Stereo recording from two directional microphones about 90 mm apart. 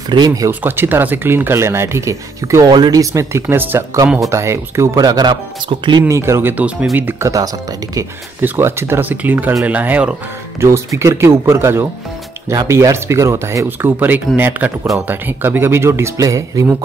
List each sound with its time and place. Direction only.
0.1 s speech: 45° right (ahead or behind)
0.5 s speech: 25° right (ahead or behind)
2.7 s speech: 45° right (ahead or behind)
4.9 s speech: 50° right (ahead or behind)
5.3 s speech: 65° right (ahead or behind)
6.0 s speech: 35° right (ahead or behind)
6.5 s speech: 15° right (ahead or behind)
7.2 s speech: 40° right (ahead or behind)
8.4 s speech: 25° right (ahead or behind)
9.1 s speech: 20° right (ahead or behind)
10.6 s speech: 30° right (ahead or behind)
13.7 s speech: 20° right (ahead or behind); by 16.7 s 35° right (ahead or behind)